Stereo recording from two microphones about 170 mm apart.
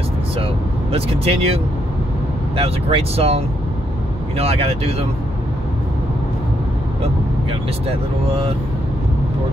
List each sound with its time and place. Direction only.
0.9 s speech: 35° right (ahead or behind)